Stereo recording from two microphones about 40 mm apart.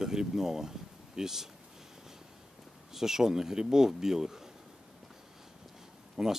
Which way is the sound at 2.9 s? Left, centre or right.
Centre.